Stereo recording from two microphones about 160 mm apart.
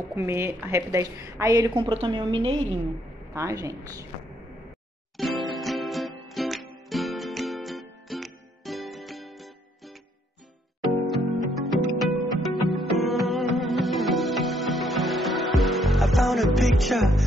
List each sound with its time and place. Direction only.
0.1 s a woman's voice: 15° right (ahead or behind)
1.8 s a woman's voice: 35° right (ahead or behind)
3.3 s a woman's voice: 20° right (ahead or behind)
5.1 s music: centre (ahead or behind)
11.5 s music: centre (ahead or behind)